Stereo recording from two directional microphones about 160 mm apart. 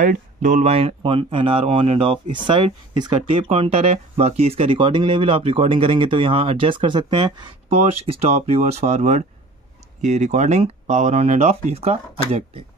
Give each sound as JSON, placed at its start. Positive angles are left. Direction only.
{"t": 0.0, "sound": "speech", "side_deg": -55}
{"t": 0.7, "sound": "speech", "side_deg": -35}
{"t": 8.1, "sound": "speech", "side_deg": -40}